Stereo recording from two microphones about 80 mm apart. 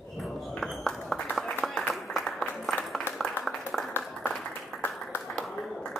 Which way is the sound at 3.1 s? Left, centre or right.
Left.